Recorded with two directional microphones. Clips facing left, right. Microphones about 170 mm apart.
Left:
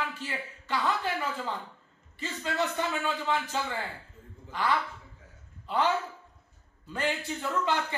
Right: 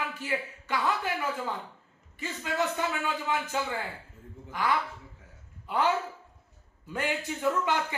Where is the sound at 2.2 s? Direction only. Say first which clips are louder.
Even; 10° right (ahead or behind).